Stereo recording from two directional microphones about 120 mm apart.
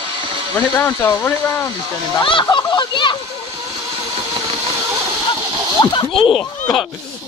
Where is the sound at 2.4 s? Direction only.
35° left (ahead or behind).